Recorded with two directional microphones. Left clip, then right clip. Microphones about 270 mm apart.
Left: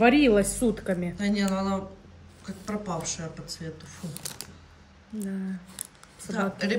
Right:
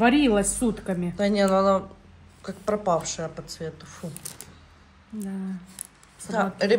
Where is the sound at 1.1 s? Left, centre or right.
Centre.